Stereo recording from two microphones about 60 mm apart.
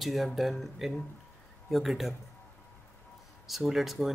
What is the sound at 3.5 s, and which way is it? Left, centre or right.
Speech, centre.